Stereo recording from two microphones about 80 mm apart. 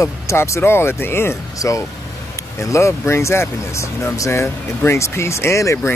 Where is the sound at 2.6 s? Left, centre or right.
Left.